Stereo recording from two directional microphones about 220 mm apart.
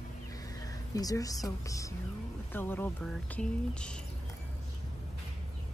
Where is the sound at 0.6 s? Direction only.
15° left (ahead or behind).